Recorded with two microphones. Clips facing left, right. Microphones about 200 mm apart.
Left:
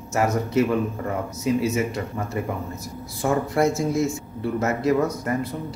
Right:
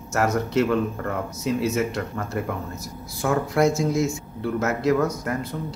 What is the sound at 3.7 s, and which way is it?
Speech, 55° left (ahead or behind).